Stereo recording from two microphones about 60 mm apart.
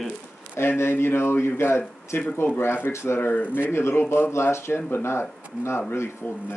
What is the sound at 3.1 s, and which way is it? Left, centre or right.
Speech, left.